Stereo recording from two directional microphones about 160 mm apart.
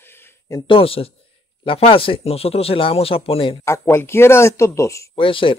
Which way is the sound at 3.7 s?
15° left (ahead or behind).